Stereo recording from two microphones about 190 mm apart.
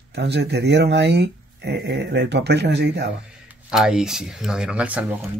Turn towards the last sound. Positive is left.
turn(degrees=-5)  # may be behind; listen again after turning